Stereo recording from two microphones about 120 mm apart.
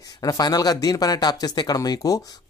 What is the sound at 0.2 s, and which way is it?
Speech, 35° left (ahead or behind).